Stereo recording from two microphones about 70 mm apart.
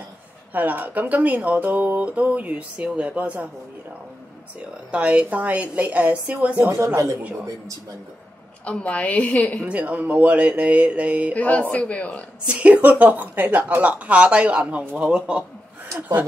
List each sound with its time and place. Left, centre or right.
0.5 s speech: right
4.6 s speech: centre
8.6 s a woman's voice: centre
9.7 s speech: right
11.3 s a woman's voice: centre
12.4 s a man's voice: centre